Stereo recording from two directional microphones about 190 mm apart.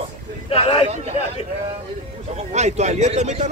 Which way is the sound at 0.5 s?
30° left (ahead or behind).